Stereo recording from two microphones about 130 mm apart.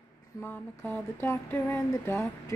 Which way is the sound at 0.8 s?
15° left (ahead or behind).